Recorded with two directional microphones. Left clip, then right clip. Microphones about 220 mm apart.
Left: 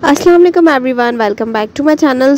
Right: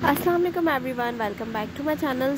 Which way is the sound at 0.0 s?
40° left (ahead or behind).